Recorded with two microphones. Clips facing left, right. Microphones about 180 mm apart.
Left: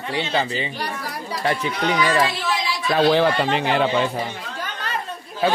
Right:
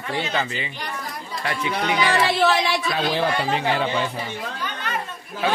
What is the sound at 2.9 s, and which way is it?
Speech, 55° left (ahead or behind).